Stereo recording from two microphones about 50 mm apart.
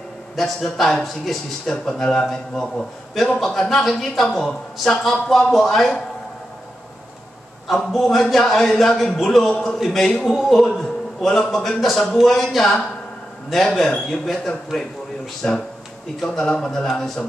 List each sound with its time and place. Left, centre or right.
0.4 s a man's voice: centre
7.8 s a man's voice: centre
10.2 s a man's voice: centre
15.4 s a man's voice: centre